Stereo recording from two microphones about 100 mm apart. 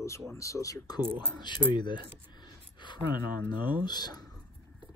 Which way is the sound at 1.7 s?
50° left (ahead or behind).